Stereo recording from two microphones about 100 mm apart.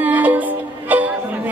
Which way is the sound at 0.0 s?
15° right (ahead or behind).